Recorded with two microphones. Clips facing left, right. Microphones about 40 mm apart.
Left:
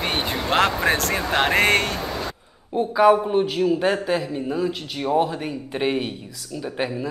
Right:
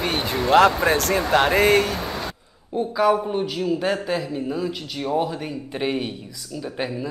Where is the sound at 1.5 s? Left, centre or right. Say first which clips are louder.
Left 1 dB; left.